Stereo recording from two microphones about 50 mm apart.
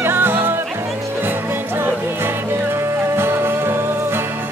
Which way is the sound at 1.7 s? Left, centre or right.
Right.